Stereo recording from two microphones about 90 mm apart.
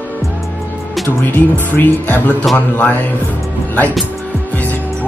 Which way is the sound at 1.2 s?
20° left (ahead or behind).